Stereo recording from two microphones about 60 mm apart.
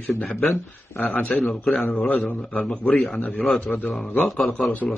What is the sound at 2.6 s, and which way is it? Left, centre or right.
A man's voice, centre.